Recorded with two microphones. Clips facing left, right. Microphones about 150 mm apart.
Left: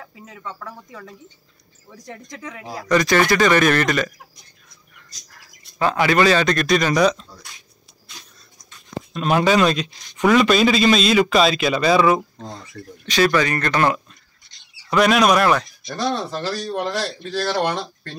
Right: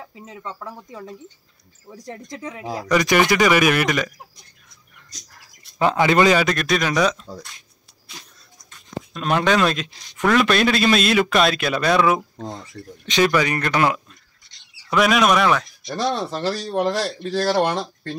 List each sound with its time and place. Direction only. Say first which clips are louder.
0.0 s speech: right 1 dB; 25° right (ahead or behind)
2.1 s speech: right 2 dB; 25° right (ahead or behind); by 4.1 s 10° right (ahead or behind)
5.8 s speech: right 1 dB; 20° right (ahead or behind)
6.4 s speech: left 2 dB; 5° right (ahead or behind)
9.1 s speech: left 2 dB; 5° left (ahead or behind)
12.4 s speech: right 2 dB; 20° right (ahead or behind); by 15.7 s centre (ahead or behind)
15.9 s speech: even; 30° right (ahead or behind)